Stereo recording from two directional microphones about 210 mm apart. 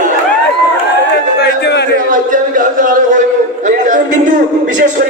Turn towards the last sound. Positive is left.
turn(degrees=-40)  # may be behind; listen again after turning